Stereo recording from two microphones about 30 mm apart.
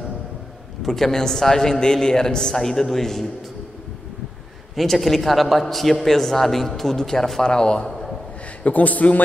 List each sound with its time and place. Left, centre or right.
0.8 s a man's voice: centre
1.8 s a man's voice: left
4.7 s a man's voice: centre
7.4 s a man's voice: left
8.6 s a man's voice: left